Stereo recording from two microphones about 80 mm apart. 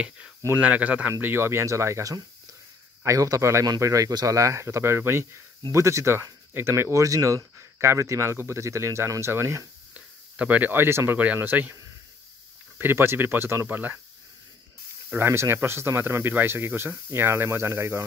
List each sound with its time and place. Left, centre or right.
0.6 s speech: centre
1.2 s speech: right
4.4 s speech: right
9.9 s speech: centre
12.7 s speech: right
15.1 s speech: right